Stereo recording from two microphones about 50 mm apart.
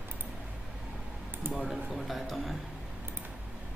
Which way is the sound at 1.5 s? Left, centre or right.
Right.